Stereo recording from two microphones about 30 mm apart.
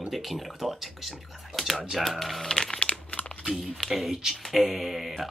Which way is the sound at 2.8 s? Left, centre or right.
Left.